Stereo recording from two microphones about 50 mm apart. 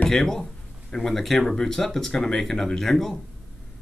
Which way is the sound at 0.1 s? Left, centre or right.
Centre.